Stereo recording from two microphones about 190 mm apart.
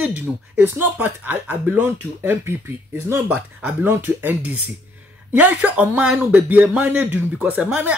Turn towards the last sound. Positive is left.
turn(degrees=-10)  # may be behind; listen again after turning